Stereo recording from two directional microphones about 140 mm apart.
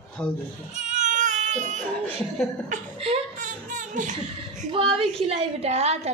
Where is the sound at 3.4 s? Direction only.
65° right (ahead or behind).